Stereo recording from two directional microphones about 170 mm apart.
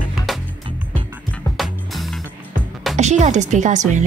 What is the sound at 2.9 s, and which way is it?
Speech, 45° right (ahead or behind).